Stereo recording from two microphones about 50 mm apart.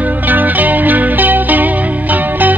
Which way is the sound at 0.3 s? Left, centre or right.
Right.